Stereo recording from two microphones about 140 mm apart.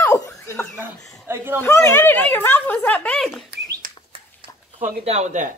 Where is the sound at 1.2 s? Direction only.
15° right (ahead or behind).